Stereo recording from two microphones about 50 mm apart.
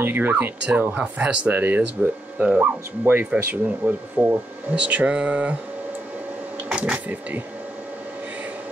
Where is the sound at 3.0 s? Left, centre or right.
Right.